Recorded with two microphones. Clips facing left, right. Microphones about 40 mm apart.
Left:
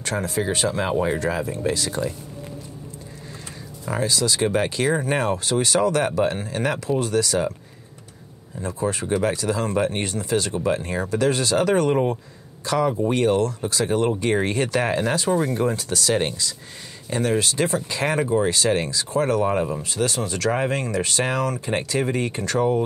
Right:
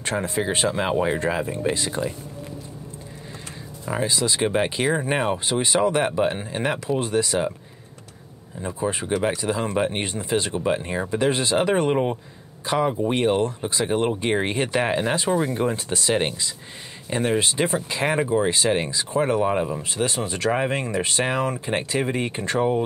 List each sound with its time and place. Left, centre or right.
0.0 s speech: right
3.9 s speech: right
8.5 s speech: right
19.4 s speech: centre
19.8 s speech: right